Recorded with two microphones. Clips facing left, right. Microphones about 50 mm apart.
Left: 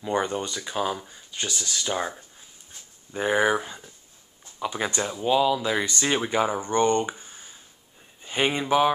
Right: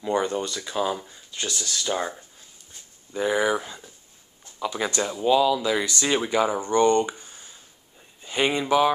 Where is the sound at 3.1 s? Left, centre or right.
Left.